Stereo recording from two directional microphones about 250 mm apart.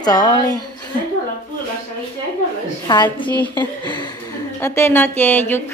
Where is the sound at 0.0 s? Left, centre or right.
Centre.